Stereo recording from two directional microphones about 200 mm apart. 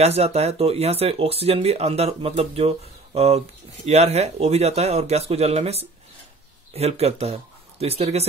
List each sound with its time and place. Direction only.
0.0 s speech: 30° right (ahead or behind)